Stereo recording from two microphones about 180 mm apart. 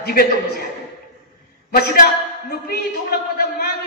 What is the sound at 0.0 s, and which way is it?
Speech, 55° left (ahead or behind).